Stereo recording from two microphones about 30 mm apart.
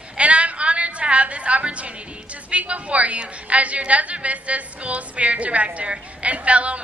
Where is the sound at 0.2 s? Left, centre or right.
Right.